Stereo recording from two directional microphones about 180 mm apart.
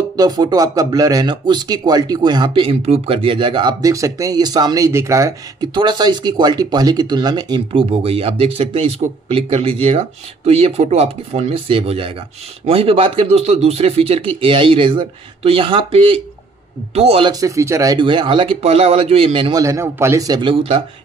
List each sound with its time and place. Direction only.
0.2 s speech: 20° right (ahead or behind)
17.3 s speech: 20° right (ahead or behind)
19.6 s speech: 15° right (ahead or behind)